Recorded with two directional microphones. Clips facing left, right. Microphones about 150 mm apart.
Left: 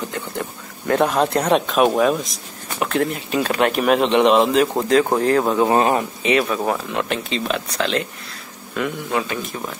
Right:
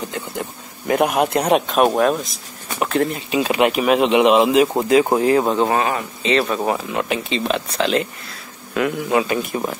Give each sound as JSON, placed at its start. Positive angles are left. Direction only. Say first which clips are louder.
{"t": 0.1, "sound": "speech", "louder": "even", "side_deg": -15}
{"t": 1.7, "sound": "speech", "louder": "even", "side_deg": 0}
{"t": 5.8, "sound": "speech", "louder": "left 3 dB", "side_deg": 35}
{"t": 6.6, "sound": "speech", "louder": "right 1 dB", "side_deg": -5}